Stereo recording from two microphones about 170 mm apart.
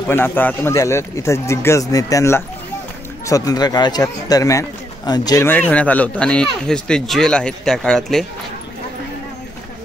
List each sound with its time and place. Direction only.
0.1 s a man's voice: 10° left (ahead or behind)